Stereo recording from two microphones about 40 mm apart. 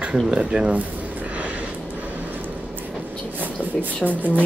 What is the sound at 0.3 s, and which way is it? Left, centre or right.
Speech, centre.